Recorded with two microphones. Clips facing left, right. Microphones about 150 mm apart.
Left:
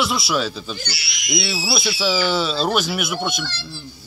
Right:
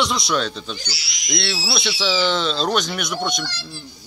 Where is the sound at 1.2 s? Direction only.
5° left (ahead or behind).